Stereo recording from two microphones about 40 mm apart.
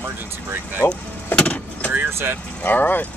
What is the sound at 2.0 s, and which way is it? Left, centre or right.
Speech, right.